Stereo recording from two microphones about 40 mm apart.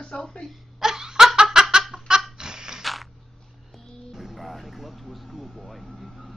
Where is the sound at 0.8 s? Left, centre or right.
Centre.